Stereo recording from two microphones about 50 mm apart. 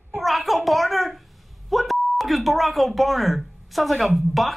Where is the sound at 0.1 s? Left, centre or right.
Centre.